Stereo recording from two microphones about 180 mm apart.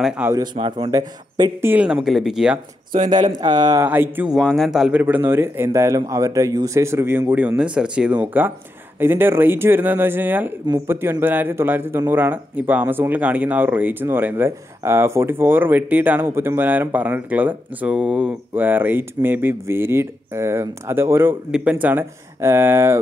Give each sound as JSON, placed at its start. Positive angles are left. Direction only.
{"t": 0.0, "sound": "a man's voice", "side_deg": -10}
{"t": 0.4, "sound": "a man's voice", "side_deg": -30}
{"t": 3.1, "sound": "a man's voice", "side_deg": -25}
{"t": 4.4, "sound": "a man's voice", "side_deg": 0}